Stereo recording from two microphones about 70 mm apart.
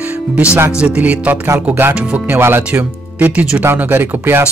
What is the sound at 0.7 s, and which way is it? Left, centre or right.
A man's voice, centre.